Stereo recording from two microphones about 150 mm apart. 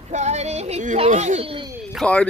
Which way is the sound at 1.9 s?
10° left (ahead or behind).